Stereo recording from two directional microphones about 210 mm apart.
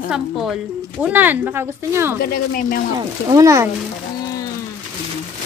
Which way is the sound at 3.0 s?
20° right (ahead or behind).